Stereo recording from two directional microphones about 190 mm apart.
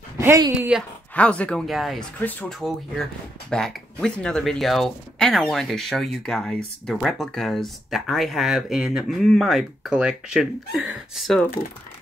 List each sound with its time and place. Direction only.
0.2 s speech: 15° right (ahead or behind)
0.7 s speech: 5° left (ahead or behind)